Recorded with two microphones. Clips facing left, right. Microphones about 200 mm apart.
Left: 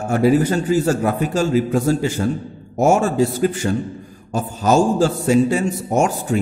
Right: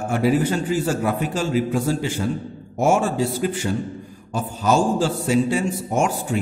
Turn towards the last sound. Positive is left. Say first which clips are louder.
# left 3 dB
turn(degrees=40)  # may be behind; listen again after turning